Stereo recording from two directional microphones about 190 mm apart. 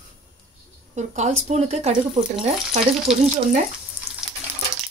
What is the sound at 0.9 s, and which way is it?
Speech, 35° right (ahead or behind).